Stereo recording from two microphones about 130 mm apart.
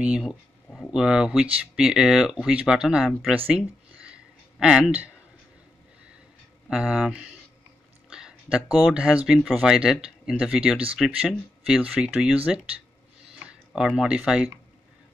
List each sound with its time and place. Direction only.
0.0 s speech: 5° right (ahead or behind)
3.3 s a sound: 10° right (ahead or behind)
6.7 s speech: 5° right (ahead or behind)
13.7 s speech: 5° right (ahead or behind)